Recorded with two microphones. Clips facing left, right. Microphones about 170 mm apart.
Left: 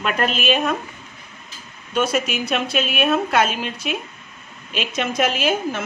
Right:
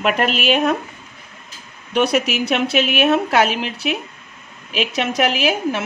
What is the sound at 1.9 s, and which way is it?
A woman's voice, 70° right (ahead or behind).